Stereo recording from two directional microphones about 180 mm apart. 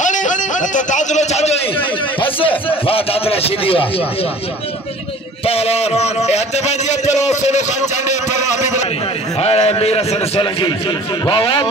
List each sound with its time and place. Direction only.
0.0 s a sound: 45° left (ahead or behind); by 2.5 s 30° left (ahead or behind)
2.9 s a man's voice: 30° left (ahead or behind)
5.4 s a man's voice: 35° left (ahead or behind)